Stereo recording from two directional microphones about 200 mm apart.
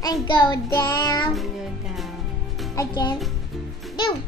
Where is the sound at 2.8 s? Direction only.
20° left (ahead or behind).